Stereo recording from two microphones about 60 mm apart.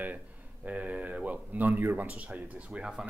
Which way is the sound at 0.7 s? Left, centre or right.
Right.